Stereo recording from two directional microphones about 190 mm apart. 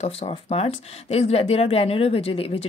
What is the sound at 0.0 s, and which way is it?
Speech, 35° left (ahead or behind).